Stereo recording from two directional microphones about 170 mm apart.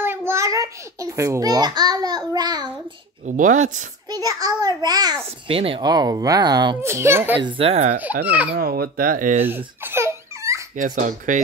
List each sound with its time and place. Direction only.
0.0 s a child's voice: 15° right (ahead or behind)
3.3 s speech: 45° right (ahead or behind)
4.1 s a child's voice: 20° right (ahead or behind)
5.2 s a child's voice: 35° right (ahead or behind); by 7.3 s 15° right (ahead or behind)
7.3 s speech: 30° right (ahead or behind)
8.5 s speech: 60° right (ahead or behind)
9.5 s laughter: 10° right (ahead or behind)
10.8 s speech: 50° right (ahead or behind)